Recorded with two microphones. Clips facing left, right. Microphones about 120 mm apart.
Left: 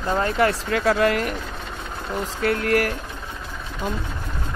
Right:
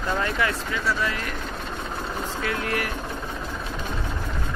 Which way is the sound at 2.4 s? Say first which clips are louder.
Left 8 dB; 55° left (ahead or behind).